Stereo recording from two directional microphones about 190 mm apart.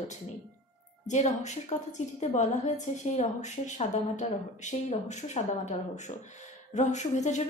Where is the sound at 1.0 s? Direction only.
40° left (ahead or behind).